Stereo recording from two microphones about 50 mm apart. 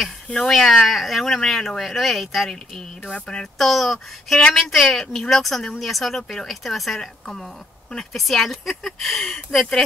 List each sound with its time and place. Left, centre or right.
0.5 s speech: centre
4.4 s speech: centre
4.6 s speech: centre